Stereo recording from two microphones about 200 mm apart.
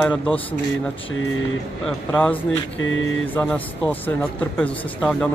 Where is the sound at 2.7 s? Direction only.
70° left (ahead or behind).